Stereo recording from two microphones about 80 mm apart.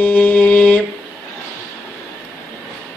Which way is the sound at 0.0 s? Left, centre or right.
Centre.